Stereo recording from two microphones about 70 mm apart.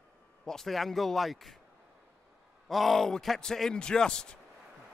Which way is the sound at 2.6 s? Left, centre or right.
Centre.